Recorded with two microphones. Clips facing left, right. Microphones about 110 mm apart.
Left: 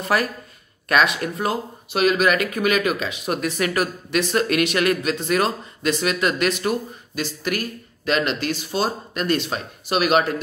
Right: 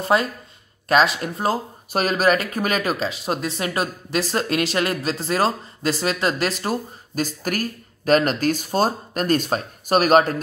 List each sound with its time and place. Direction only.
0.0 s speech: 25° right (ahead or behind); by 10.3 s 40° right (ahead or behind)